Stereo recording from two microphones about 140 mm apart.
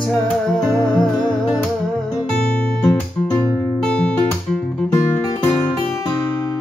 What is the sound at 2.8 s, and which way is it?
Guitar, 10° left (ahead or behind).